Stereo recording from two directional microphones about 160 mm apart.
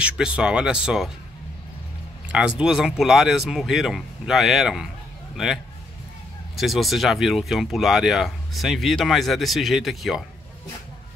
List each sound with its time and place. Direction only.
0.0 s speech: 5° right (ahead or behind)
2.3 s speech: 5° right (ahead or behind)
6.5 s speech: centre (ahead or behind)